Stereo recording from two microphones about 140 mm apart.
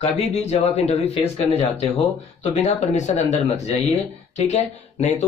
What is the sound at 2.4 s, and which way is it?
Speech, 55° left (ahead or behind).